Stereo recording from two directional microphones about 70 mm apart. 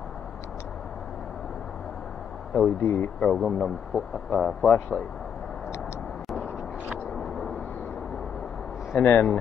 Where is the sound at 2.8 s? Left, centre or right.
Left.